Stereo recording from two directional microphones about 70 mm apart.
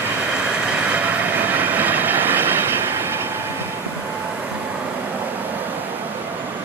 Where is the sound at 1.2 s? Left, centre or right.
Right.